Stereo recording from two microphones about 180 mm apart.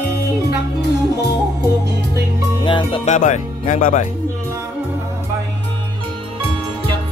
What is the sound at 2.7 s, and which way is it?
Music, 25° left (ahead or behind).